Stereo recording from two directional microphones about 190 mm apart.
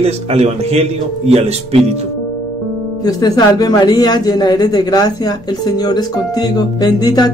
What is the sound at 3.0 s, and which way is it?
Speech, 20° left (ahead or behind).